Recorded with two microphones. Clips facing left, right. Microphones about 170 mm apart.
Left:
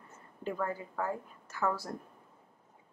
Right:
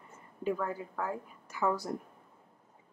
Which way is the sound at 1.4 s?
15° right (ahead or behind).